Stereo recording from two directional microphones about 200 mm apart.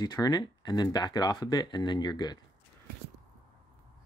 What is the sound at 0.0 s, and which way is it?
Speech, 20° left (ahead or behind).